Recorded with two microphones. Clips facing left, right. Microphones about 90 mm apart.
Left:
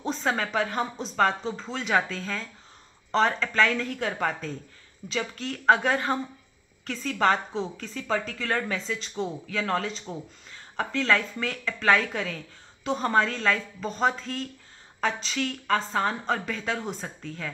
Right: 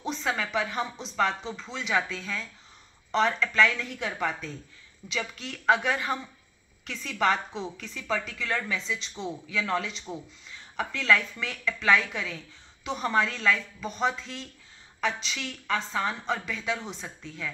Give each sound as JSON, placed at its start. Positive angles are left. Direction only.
{"t": 0.0, "sound": "a woman's voice", "side_deg": 40}